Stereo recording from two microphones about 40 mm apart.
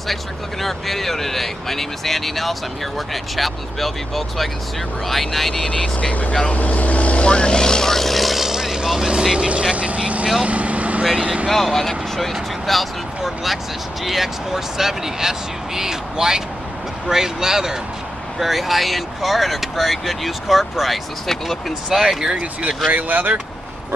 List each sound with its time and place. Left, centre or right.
0.1 s speech: centre
6.4 s speech: left; by 8.5 s centre
8.5 s vehicle: centre
9.5 s speech: right
10.4 s vehicle: right
11.1 s speech: right
11.4 s speech: centre
18.4 s speech: centre
22.8 s speech: right